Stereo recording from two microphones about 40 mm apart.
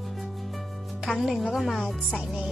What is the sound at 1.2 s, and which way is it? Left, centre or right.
Speech, centre.